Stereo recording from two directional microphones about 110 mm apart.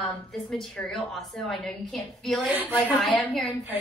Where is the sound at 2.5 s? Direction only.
15° right (ahead or behind).